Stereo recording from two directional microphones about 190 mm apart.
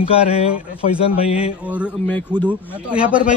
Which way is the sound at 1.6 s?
5° right (ahead or behind).